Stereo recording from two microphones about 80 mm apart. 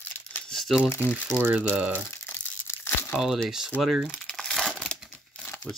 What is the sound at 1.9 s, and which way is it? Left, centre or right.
Crumpling, left.